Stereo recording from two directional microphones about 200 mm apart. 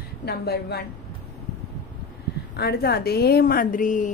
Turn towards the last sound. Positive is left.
turn(degrees=40)  # may be behind; listen again after turning